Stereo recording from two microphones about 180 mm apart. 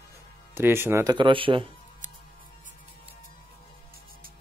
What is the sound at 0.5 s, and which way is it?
Speech, 10° right (ahead or behind).